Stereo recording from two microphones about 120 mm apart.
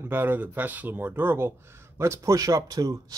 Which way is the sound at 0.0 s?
20° right (ahead or behind).